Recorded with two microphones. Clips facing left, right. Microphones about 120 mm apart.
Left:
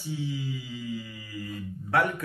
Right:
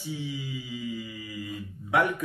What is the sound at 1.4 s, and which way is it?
Speech, 15° right (ahead or behind).